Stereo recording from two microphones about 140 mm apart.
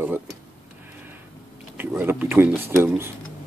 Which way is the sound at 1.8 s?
15° right (ahead or behind).